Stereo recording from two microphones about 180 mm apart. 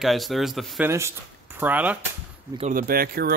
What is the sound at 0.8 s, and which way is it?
Speech, 15° right (ahead or behind).